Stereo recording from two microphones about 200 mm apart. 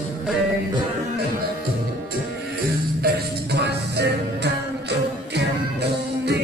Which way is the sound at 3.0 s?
55° right (ahead or behind).